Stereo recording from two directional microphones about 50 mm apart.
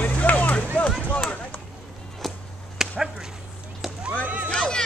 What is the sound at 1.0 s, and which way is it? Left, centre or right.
Run, left.